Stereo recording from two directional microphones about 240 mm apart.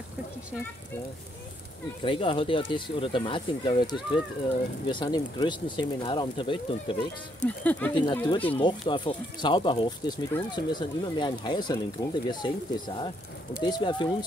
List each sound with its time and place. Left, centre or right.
2.0 s speech: left
7.4 s speech: centre
7.9 s speech: centre
8.5 s speech: centre